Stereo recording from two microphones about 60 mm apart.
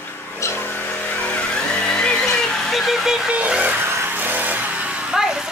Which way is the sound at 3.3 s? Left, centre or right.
Right.